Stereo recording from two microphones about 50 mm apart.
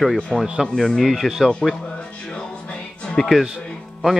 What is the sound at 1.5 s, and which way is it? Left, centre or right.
Speech, centre.